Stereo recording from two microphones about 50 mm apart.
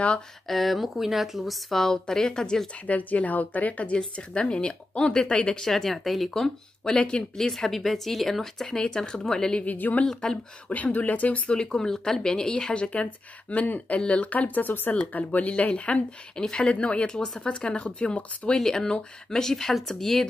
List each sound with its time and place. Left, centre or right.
0.5 s a woman's voice: centre
2.9 s a woman's voice: left
4.0 s speech: centre
7.3 s speech: centre
9.7 s a woman's voice: left
10.0 s speech: centre
10.7 s a woman's voice: left
11.5 s a woman's voice: centre
18.6 s speech: centre